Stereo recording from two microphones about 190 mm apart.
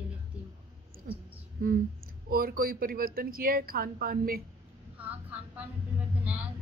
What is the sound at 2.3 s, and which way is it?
Speech, 50° right (ahead or behind).